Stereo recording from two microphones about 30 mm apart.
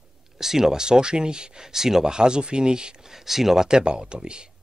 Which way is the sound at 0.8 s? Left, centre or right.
Right.